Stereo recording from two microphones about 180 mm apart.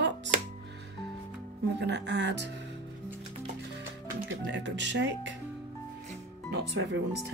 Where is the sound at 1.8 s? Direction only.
70° right (ahead or behind).